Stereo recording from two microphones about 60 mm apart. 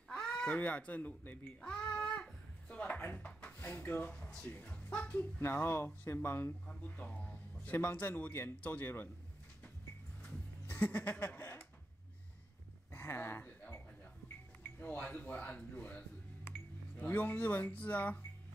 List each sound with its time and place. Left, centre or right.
0.5 s speech: left
1.6 s a sound: centre
2.8 s a sound: left
4.1 s speech: centre
5.4 s speech: left
6.7 s speech: left
7.7 s speech: left
10.7 s sheep: left
12.9 s a sound: left
14.8 s speech: left
17.0 s speech: left